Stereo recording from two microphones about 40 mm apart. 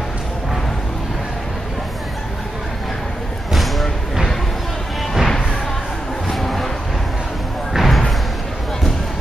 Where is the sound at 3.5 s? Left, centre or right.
Centre.